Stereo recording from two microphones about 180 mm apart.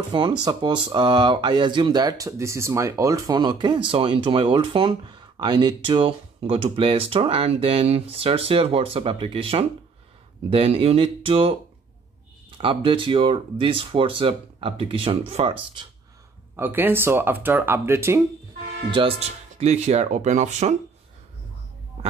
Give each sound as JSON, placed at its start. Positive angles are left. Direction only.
{"t": 0.4, "sound": "speech", "side_deg": -25}
{"t": 16.5, "sound": "speech", "side_deg": -10}
{"t": 18.9, "sound": "speech", "side_deg": -30}